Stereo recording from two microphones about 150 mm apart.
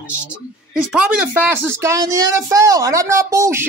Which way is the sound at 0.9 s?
10° right (ahead or behind).